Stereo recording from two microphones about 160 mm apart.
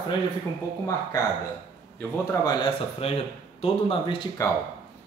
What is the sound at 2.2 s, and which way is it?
Speech, 25° left (ahead or behind).